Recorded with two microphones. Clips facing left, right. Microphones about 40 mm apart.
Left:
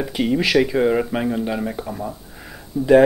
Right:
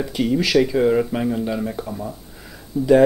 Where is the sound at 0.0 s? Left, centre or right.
Centre.